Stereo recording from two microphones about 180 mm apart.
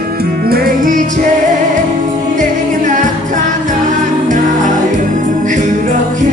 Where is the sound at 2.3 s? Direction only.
45° right (ahead or behind).